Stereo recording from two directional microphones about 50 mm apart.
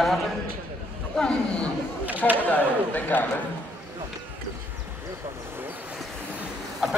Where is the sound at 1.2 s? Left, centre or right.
Centre.